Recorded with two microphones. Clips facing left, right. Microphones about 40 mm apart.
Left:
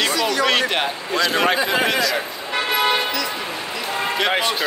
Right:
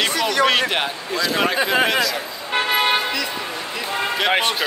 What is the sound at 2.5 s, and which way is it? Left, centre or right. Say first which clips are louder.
Vehicle: right 1 dB; right.